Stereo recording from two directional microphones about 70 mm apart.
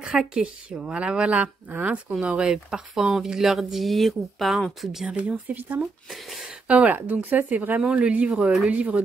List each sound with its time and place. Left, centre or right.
0.0 s a woman's voice: centre
5.3 s speech: right
5.8 s speech: centre
6.7 s a woman's voice: centre